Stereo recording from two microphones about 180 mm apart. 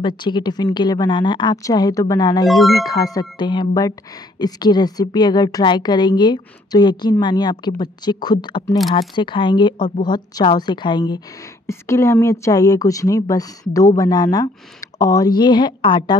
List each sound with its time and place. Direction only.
0.0 s a woman's voice: 25° left (ahead or behind)